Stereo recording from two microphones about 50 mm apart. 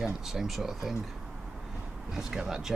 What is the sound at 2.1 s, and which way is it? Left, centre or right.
Speech, centre.